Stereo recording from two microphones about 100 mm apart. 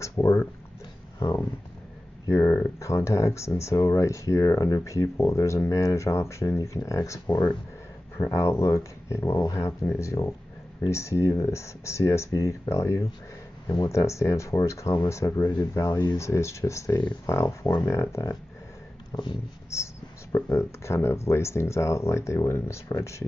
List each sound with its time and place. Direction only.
0.0 s speech: 30° left (ahead or behind)
2.2 s speech: 25° left (ahead or behind)
8.2 s speech: 25° left (ahead or behind)
19.7 s speech: 30° left (ahead or behind)